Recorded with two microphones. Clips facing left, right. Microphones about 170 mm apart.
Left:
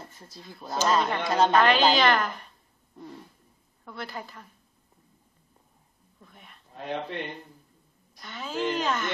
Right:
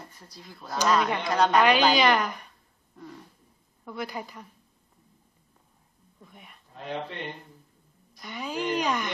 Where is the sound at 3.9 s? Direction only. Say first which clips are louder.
Right 3 dB; 10° right (ahead or behind).